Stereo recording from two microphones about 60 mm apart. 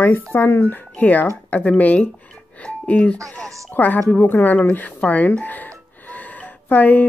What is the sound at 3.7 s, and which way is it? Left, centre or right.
A woman's voice, left.